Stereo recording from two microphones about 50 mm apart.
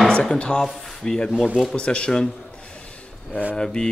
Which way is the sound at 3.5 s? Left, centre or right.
Centre.